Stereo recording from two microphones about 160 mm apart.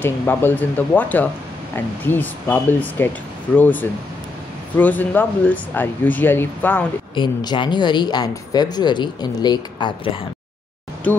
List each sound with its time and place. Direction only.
0.0 s speech: 15° left (ahead or behind)
7.2 s speech: 30° left (ahead or behind)